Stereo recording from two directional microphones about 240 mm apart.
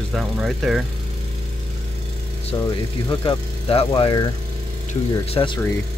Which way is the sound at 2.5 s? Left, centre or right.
Centre.